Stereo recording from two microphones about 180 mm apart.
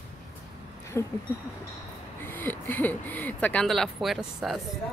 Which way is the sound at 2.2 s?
10° left (ahead or behind).